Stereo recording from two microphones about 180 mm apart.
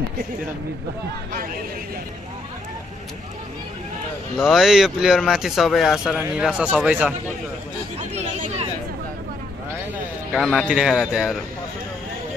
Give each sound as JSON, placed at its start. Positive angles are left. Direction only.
{"t": 1.3, "sound": "speech", "side_deg": -55}
{"t": 4.4, "sound": "speech", "side_deg": 0}
{"t": 8.0, "sound": "chatter", "side_deg": -40}
{"t": 10.3, "sound": "speech", "side_deg": -5}